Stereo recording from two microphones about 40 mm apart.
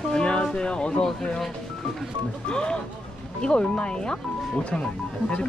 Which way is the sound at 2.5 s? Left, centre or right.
Left.